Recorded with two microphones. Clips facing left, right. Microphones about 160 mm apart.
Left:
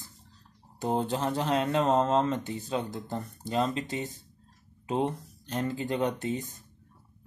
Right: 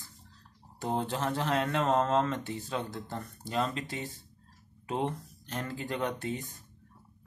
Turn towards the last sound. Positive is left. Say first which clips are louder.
# left 4 dB
turn(degrees=20)  # may be behind; listen again after turning